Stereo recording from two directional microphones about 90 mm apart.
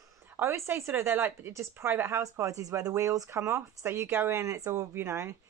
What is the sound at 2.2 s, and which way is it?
Speech, 35° right (ahead or behind).